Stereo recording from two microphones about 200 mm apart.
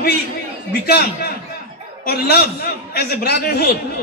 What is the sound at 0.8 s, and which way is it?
A man's voice, 50° left (ahead or behind).